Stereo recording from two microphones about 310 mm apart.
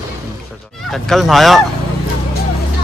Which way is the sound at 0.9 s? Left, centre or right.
Centre.